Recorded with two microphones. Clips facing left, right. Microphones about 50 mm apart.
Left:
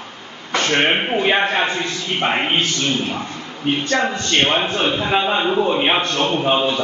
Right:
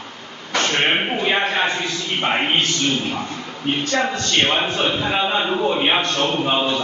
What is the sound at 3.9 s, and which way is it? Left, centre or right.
Speech, centre.